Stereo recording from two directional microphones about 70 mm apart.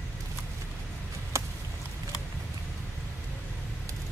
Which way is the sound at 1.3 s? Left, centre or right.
Right.